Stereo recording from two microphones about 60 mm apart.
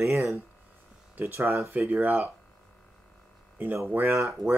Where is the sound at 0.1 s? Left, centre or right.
Right.